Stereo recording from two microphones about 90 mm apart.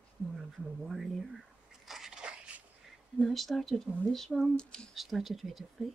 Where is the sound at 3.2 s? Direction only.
Centre (ahead or behind).